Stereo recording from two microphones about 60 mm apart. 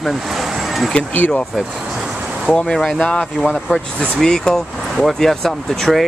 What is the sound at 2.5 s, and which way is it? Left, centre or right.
Speech, centre.